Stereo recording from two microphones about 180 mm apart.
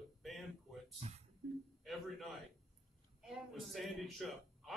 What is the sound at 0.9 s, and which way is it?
Speech, 35° right (ahead or behind).